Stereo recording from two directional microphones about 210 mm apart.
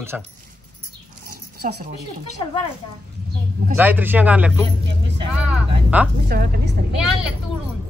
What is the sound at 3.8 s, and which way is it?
Speech, 10° right (ahead or behind).